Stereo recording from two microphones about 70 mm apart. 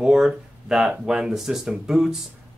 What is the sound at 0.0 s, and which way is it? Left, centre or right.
Speech, centre.